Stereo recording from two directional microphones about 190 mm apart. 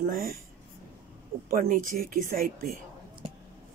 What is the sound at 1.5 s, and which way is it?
Speech, 45° right (ahead or behind).